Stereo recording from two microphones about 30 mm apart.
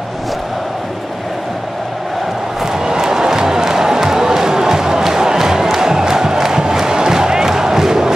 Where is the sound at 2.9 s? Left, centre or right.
Right.